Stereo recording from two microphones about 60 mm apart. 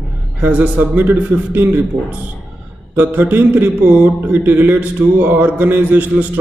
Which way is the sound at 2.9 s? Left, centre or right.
Right.